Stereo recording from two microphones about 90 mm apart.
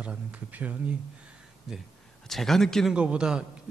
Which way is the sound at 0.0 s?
15° right (ahead or behind).